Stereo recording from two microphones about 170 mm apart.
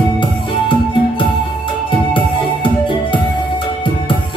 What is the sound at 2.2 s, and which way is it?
Music, 30° left (ahead or behind).